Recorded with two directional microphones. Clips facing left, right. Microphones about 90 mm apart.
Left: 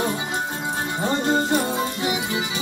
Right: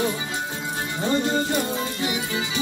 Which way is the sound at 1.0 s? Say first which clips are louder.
Left 1 dB; 25° left (ahead or behind).